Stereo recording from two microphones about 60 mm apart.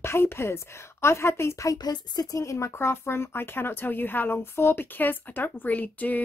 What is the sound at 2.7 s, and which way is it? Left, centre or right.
Speech, left.